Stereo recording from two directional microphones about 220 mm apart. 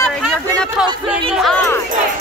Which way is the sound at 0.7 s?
Centre (ahead or behind).